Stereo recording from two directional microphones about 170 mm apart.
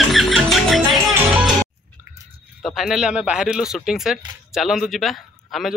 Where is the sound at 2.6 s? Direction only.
Centre (ahead or behind).